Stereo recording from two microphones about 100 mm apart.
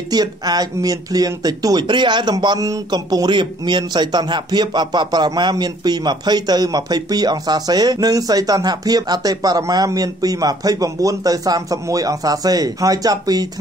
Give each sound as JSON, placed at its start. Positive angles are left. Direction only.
{"t": 0.1, "sound": "speech", "side_deg": -40}